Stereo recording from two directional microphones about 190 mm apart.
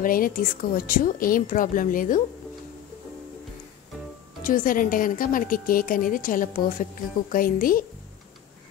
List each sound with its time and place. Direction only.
0.0 s a woman's voice: 45° left (ahead or behind)
4.4 s a woman's voice: 45° left (ahead or behind)